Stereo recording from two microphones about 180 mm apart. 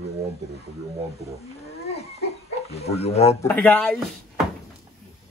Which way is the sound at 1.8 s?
35° left (ahead or behind).